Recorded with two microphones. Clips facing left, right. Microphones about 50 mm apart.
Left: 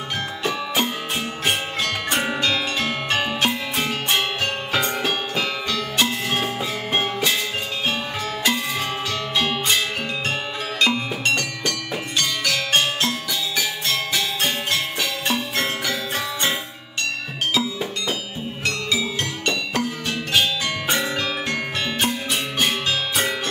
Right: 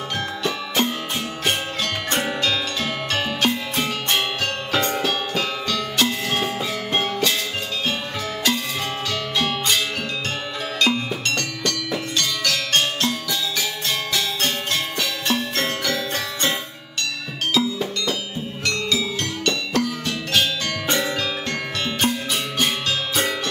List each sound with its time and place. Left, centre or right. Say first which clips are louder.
0.4 s music: even; centre
9.4 s music: left 1 dB; centre
10.8 s music: even; centre
17.6 s music: right 5 dB; centre